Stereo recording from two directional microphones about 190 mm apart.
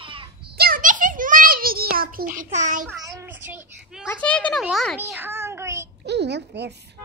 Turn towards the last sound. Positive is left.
turn(degrees=-60)  # may be behind; listen again after turning